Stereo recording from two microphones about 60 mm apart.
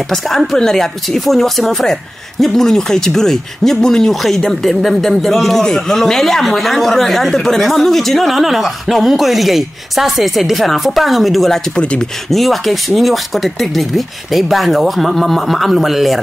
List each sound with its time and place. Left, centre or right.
0.1 s speech: centre
11.7 s speech: centre
12.3 s speech: centre